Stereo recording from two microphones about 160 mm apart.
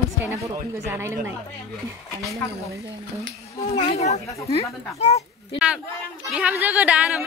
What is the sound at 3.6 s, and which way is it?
Speech, 40° left (ahead or behind).